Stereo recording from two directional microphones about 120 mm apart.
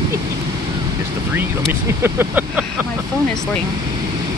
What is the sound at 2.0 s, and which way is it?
Speech, 15° right (ahead or behind).